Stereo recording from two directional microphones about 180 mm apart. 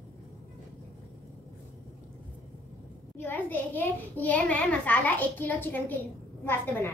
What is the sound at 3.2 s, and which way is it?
A child's voice, 10° left (ahead or behind).